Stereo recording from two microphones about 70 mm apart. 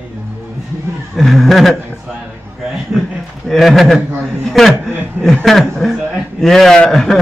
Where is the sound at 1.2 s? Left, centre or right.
Centre.